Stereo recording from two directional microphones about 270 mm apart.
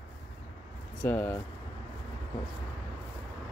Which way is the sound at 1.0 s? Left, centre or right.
Centre.